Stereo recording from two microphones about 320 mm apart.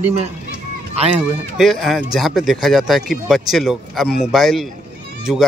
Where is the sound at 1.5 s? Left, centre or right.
Centre.